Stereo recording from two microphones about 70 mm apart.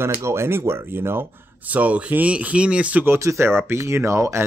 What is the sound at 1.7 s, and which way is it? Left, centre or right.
Speech, right.